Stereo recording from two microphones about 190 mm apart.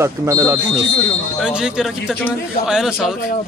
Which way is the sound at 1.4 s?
5° right (ahead or behind).